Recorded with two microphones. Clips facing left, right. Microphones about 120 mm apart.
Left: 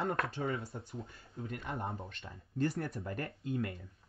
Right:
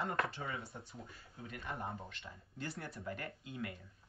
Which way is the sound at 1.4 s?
55° left (ahead or behind).